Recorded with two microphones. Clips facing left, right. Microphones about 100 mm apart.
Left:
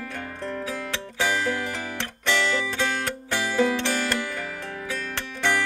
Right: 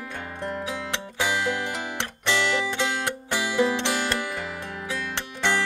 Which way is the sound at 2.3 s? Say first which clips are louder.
Even; 20° right (ahead or behind).